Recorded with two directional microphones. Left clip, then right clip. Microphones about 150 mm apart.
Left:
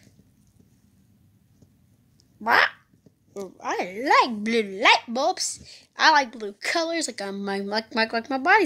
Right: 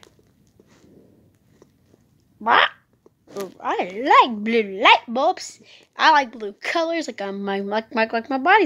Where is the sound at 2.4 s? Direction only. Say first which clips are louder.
Right 3 dB; centre (ahead or behind).